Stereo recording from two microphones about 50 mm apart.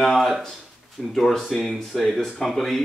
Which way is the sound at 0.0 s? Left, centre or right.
Centre.